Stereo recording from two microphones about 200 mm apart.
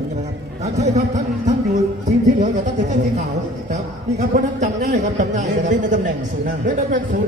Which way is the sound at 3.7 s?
35° right (ahead or behind).